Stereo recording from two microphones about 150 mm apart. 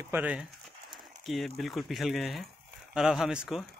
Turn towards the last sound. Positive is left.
turn(degrees=-5)  # may be behind; listen again after turning